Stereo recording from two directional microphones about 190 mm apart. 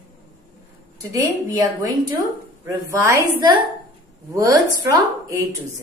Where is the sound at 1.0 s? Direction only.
20° right (ahead or behind).